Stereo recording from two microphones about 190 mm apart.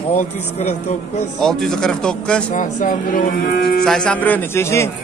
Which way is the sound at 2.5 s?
40° left (ahead or behind).